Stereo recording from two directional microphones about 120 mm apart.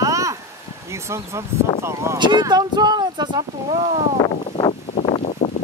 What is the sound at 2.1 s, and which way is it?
Speech, 40° right (ahead or behind).